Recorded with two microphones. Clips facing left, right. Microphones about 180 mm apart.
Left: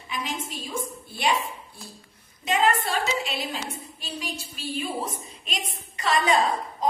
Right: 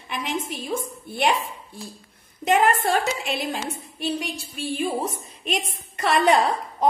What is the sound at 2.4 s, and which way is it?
A woman's voice, 55° right (ahead or behind).